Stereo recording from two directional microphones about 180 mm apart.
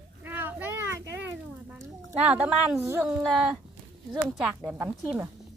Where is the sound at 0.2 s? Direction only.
10° right (ahead or behind).